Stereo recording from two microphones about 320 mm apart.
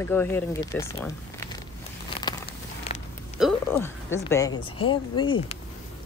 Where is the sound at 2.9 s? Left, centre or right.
Centre.